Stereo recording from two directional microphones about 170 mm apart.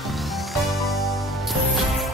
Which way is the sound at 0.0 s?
Centre (ahead or behind).